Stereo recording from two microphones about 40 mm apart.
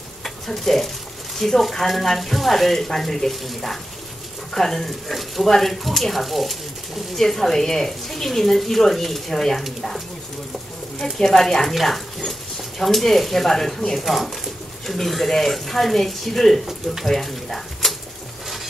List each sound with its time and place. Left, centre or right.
0.2 s speech: centre
9.6 s speech: centre
11.2 s speech: centre
14.0 s speech: centre
17.0 s a sound: centre